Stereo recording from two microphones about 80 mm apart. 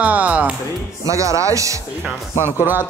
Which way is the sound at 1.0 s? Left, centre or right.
Right.